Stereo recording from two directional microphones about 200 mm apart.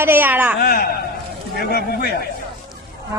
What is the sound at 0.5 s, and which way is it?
A man's voice, 45° left (ahead or behind).